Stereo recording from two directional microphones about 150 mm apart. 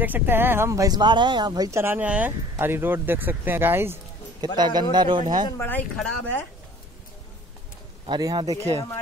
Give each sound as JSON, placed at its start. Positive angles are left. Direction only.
{"t": 0.0, "sound": "speech", "side_deg": -15}
{"t": 4.6, "sound": "speech", "side_deg": -30}
{"t": 5.6, "sound": "speech", "side_deg": 10}
{"t": 8.1, "sound": "speech", "side_deg": -25}